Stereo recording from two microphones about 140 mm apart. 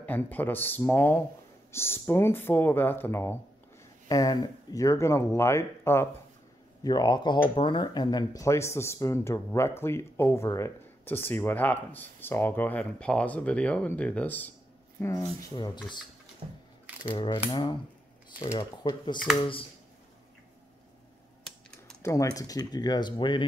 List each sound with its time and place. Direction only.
0.0 s speech: 10° left (ahead or behind)
6.8 s speech: 30° left (ahead or behind)
15.5 s speech: 30° left (ahead or behind)
17.5 s speech: 35° left (ahead or behind)
18.4 s speech: 25° left (ahead or behind)
21.5 s typing: 5° left (ahead or behind)
22.0 s speech: 25° left (ahead or behind)